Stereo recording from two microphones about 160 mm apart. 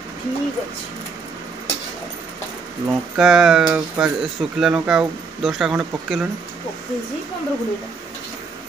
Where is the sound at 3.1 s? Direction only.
Centre (ahead or behind).